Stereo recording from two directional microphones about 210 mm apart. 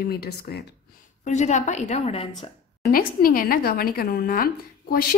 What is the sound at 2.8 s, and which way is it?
Speech, 45° left (ahead or behind).